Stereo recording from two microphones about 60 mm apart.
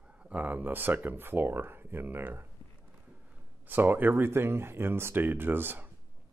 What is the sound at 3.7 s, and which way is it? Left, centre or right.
Speech, right.